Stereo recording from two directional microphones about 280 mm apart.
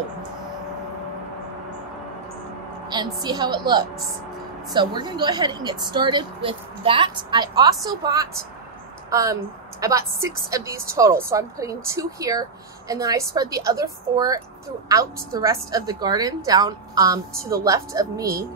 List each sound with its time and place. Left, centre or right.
2.9 s a woman's voice: centre